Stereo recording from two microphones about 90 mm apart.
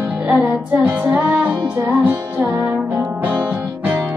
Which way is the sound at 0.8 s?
20° right (ahead or behind).